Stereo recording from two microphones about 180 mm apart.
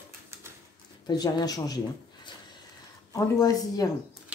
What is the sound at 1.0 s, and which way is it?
Speech, 20° left (ahead or behind).